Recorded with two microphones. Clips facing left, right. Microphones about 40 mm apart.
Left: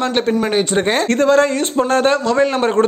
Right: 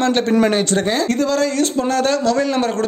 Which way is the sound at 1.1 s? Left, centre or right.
Left.